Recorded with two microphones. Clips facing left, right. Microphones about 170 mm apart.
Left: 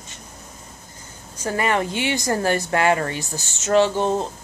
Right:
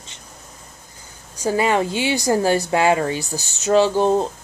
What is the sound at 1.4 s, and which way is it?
Speech, 15° right (ahead or behind).